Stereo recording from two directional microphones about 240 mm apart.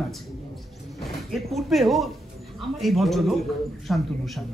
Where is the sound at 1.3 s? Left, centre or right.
Centre.